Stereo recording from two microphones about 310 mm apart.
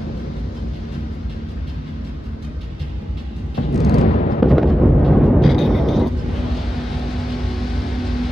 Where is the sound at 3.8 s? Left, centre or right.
Left.